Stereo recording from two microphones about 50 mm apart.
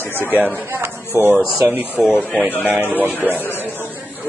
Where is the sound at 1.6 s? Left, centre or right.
Right.